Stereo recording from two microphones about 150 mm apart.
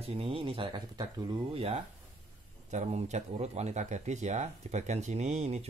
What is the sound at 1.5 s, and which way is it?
Speech, 40° right (ahead or behind).